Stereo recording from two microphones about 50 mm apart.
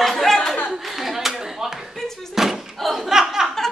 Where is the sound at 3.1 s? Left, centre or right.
Centre.